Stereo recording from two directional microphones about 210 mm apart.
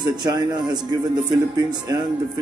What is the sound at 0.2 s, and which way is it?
A man's voice, 20° right (ahead or behind).